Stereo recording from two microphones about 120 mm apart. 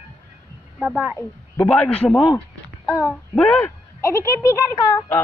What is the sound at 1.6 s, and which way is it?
Speech, 10° left (ahead or behind).